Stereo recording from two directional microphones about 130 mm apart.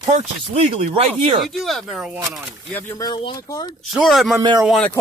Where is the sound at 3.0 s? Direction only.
35° left (ahead or behind).